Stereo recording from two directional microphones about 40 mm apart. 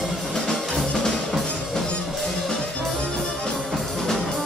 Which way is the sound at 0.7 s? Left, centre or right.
Centre.